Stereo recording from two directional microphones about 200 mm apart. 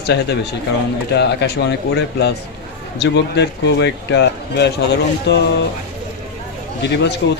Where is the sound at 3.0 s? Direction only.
60° left (ahead or behind).